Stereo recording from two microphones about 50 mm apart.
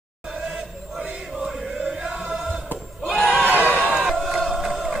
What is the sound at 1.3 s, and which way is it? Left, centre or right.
Choir, centre.